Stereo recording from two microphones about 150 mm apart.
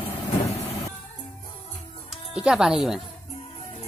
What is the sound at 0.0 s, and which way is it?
Vehicle, 40° left (ahead or behind).